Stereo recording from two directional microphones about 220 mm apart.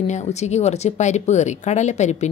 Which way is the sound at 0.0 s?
30° left (ahead or behind).